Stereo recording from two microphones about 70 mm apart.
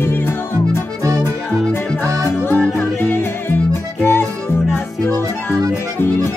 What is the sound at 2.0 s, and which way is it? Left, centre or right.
Music, right.